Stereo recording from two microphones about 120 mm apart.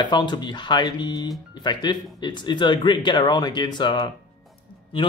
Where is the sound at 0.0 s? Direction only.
40° left (ahead or behind).